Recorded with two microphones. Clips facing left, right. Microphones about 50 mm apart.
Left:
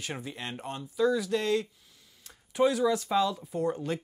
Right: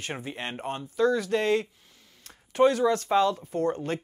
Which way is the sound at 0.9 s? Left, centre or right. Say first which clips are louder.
Right 2 dB; right.